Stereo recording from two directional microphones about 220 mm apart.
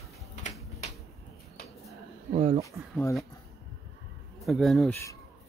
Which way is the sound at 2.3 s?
25° right (ahead or behind).